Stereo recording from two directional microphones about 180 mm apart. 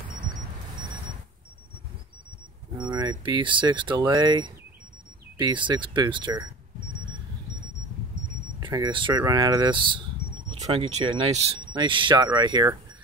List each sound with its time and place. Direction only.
2.8 s speech: 25° right (ahead or behind)
8.5 s speech: 20° right (ahead or behind)